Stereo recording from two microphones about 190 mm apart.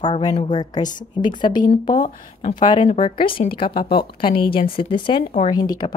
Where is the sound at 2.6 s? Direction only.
25° left (ahead or behind).